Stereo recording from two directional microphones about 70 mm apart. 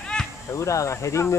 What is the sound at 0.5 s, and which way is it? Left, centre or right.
Speech, left.